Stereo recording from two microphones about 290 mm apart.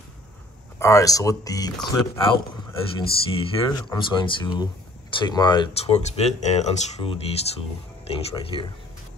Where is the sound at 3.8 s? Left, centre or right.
Centre.